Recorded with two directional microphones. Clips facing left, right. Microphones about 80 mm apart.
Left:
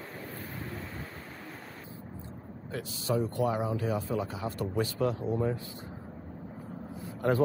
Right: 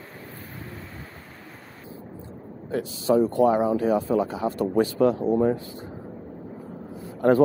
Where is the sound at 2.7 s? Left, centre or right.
Right.